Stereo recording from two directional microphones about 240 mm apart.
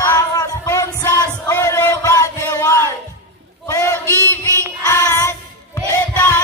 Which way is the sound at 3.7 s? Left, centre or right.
Centre.